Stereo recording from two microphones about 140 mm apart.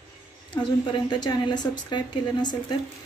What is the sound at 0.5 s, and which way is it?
Speech, 35° left (ahead or behind).